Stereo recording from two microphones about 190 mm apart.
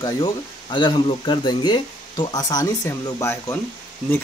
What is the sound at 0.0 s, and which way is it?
Speech, 25° left (ahead or behind).